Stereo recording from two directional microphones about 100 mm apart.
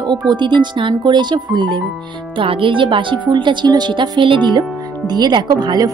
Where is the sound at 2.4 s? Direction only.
60° right (ahead or behind).